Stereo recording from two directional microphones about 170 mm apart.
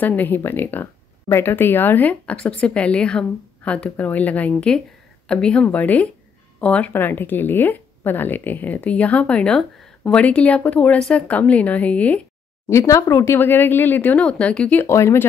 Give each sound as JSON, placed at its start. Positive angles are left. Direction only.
{"t": 0.0, "sound": "a woman's voice", "side_deg": 10}